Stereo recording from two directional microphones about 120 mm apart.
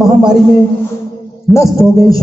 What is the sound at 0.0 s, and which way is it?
Speech, 5° right (ahead or behind).